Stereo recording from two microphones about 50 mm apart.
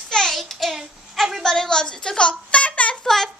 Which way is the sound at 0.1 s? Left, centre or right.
Centre.